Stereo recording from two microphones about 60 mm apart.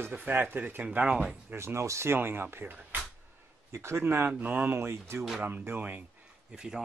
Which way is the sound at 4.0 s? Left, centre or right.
Right.